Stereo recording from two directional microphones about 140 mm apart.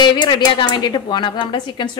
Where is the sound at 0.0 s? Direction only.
35° left (ahead or behind).